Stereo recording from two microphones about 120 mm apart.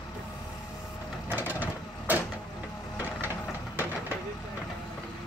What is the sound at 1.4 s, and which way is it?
Vehicle, 15° right (ahead or behind).